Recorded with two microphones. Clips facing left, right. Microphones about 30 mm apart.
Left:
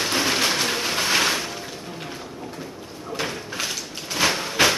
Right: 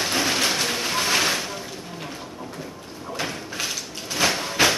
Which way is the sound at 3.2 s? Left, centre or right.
Centre.